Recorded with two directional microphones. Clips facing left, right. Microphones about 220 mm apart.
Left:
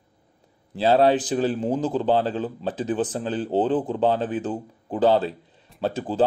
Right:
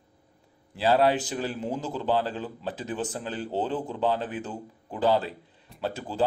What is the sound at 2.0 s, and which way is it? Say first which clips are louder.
Speech: left 3 dB; 20° left (ahead or behind).